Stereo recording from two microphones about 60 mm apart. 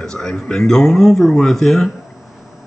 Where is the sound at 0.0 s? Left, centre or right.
Centre.